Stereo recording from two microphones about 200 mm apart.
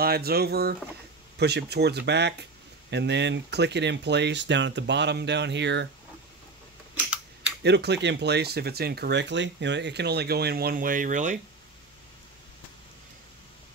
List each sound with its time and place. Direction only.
0.0 s speech: 50° right (ahead or behind)
7.6 s speech: 55° right (ahead or behind); by 11.3 s 40° right (ahead or behind)